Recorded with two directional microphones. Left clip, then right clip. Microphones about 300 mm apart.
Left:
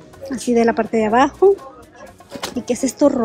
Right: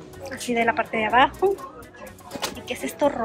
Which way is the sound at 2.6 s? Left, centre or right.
Centre.